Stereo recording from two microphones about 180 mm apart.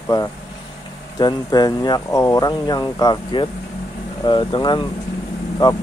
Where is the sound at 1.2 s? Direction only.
20° left (ahead or behind).